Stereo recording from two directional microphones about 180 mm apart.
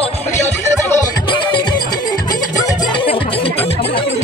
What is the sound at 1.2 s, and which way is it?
Music, 25° left (ahead or behind).